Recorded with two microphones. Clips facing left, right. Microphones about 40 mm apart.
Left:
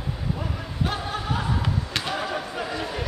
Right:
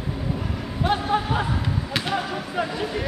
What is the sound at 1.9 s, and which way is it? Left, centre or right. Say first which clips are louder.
Basketball bounce: right 2 dB; centre.